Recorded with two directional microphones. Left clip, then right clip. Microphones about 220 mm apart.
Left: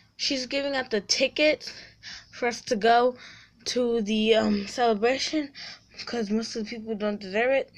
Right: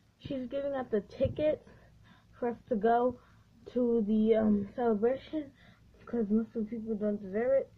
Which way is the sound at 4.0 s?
45° left (ahead or behind).